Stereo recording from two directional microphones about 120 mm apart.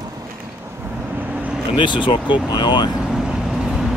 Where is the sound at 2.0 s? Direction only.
40° left (ahead or behind).